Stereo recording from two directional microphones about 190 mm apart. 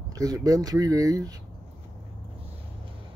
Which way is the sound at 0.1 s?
20° right (ahead or behind).